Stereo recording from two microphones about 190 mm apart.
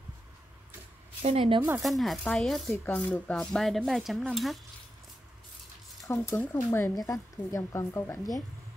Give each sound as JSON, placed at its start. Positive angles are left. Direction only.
{"t": 1.2, "sound": "speech", "side_deg": -30}
{"t": 1.8, "sound": "speech", "side_deg": 0}
{"t": 6.0, "sound": "a woman's voice", "side_deg": 15}